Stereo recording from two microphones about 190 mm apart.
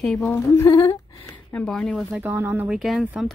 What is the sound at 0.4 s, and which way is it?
A woman's voice, 15° left (ahead or behind).